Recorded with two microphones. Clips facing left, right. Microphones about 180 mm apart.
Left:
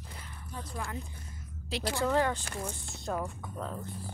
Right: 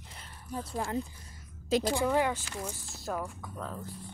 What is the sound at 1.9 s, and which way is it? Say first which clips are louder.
Speech: right 1 dB; 15° right (ahead or behind).